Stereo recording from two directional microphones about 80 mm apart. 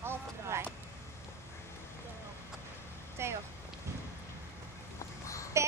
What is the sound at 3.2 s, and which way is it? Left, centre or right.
Rain on surface, right.